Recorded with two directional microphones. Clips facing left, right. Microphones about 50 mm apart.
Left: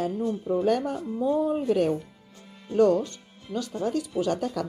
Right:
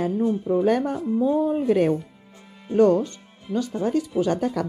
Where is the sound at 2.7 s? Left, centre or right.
Right.